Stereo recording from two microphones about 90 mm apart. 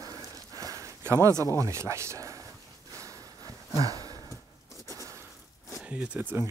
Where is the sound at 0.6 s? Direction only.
40° right (ahead or behind).